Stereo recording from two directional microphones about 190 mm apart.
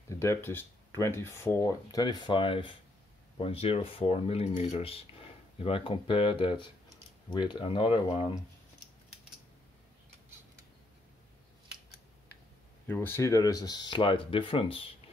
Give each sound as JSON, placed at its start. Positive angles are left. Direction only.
{"t": 0.1, "sound": "speech", "side_deg": 15}
{"t": 12.8, "sound": "speech", "side_deg": 10}